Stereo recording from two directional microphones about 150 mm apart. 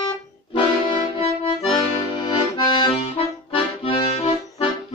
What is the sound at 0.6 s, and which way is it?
Accordion, 35° left (ahead or behind).